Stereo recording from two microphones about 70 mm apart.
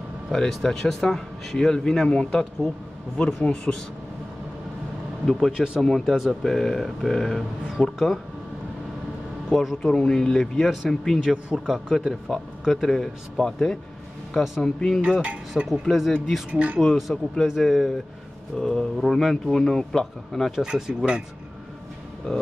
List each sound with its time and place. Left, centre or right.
0.3 s speech: centre
5.2 s speech: centre
9.5 s speech: centre
9.8 s speech: centre
16.5 s speech: centre
16.8 s speech: centre
20.6 s speech: centre